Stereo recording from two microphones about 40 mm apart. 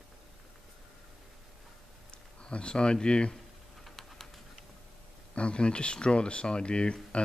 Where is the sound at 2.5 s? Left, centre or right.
Left.